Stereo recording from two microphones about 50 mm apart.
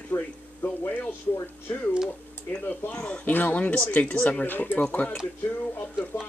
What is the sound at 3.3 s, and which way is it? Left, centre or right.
Speech, left.